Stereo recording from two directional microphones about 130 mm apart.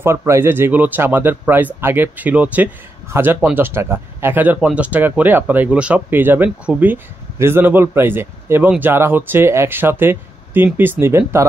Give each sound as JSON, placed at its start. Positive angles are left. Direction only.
{"t": 0.0, "sound": "speech", "side_deg": -20}